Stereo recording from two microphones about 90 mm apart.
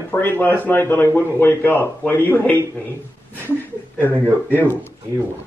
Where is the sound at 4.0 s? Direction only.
20° left (ahead or behind).